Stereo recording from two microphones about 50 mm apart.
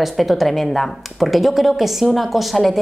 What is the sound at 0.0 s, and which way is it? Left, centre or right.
A woman's voice, centre.